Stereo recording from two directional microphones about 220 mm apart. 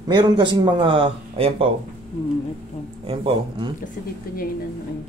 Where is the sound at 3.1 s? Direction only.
25° right (ahead or behind).